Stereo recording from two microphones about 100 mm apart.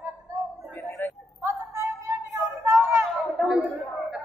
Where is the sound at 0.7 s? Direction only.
20° left (ahead or behind).